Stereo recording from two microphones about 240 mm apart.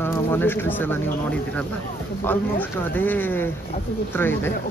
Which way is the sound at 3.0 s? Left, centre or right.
Centre.